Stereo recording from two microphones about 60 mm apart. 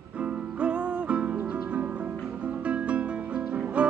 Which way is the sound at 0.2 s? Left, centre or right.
Centre.